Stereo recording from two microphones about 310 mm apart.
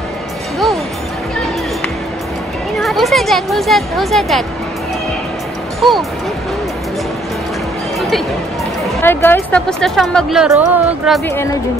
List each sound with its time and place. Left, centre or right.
2.8 s a woman's voice: centre
5.8 s speech: centre
9.0 s a woman's voice: centre